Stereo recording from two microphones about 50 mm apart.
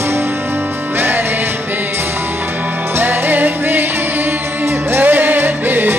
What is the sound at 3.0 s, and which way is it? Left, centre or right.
Music, right.